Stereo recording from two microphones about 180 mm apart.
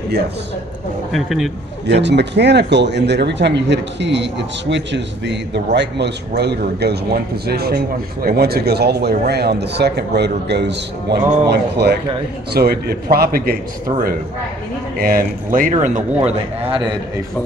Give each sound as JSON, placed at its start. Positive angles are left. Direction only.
{"t": 1.1, "sound": "speech", "side_deg": 0}
{"t": 1.9, "sound": "a man's voice", "side_deg": -70}
{"t": 15.0, "sound": "speech", "side_deg": -55}
{"t": 16.3, "sound": "a man's voice", "side_deg": -30}